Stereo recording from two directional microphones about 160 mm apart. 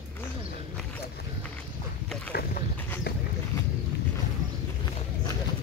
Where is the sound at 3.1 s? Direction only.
75° left (ahead or behind).